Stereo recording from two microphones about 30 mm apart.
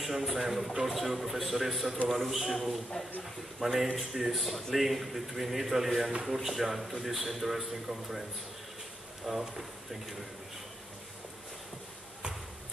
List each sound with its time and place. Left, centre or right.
0.0 s a man's voice: centre
2.0 s a man's voice: centre
9.3 s a man's voice: centre